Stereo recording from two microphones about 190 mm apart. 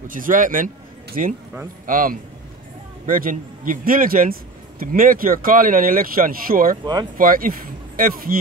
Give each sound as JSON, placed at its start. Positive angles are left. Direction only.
{"t": 0.1, "sound": "a man's voice", "side_deg": -45}